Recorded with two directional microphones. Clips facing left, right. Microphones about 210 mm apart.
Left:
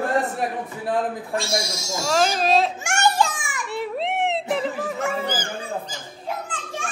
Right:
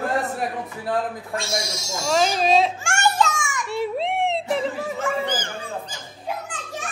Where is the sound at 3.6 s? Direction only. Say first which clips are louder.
Right 1 dB; centre (ahead or behind).